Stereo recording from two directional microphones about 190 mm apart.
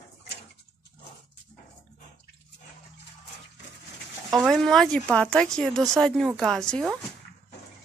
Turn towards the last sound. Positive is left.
turn(degrees=5)  # may be behind; listen again after turning